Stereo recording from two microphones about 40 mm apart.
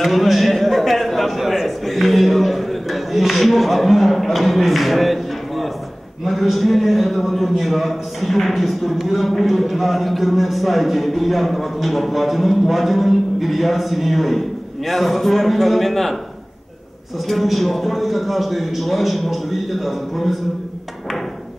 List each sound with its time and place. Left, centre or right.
0.0 s a sound: centre
1.4 s speech: centre
17.3 s speech: centre